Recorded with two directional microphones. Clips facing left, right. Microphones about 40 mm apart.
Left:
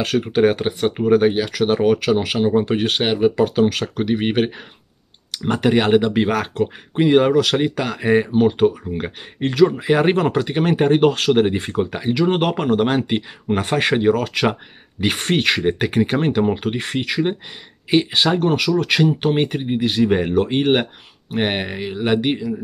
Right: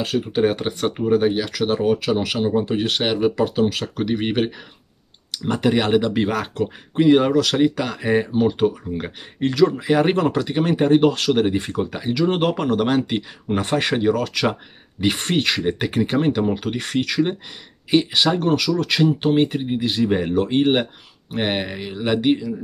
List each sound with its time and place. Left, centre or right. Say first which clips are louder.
0.2 s speech: left 4 dB; left
0.7 s speech: left 3 dB; left
1.2 s speech: left 3 dB; left
3.0 s speech: left 3 dB; left
3.4 s speech: left 3 dB; left
4.0 s speech: left 2 dB; left
6.2 s speech: left 3 dB; left